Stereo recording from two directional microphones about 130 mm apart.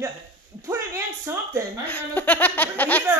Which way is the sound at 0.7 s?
25° right (ahead or behind).